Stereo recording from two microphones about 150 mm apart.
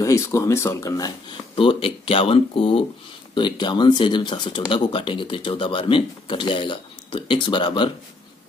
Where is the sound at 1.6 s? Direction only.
35° left (ahead or behind).